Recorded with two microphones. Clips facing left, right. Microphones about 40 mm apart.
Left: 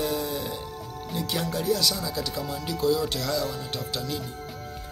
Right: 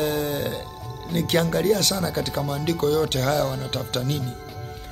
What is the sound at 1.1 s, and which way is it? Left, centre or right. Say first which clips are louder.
Speech: right 8 dB; right.